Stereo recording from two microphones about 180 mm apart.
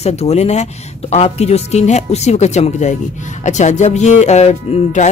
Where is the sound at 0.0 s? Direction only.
35° left (ahead or behind).